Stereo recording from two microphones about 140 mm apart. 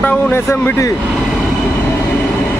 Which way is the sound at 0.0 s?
10° left (ahead or behind).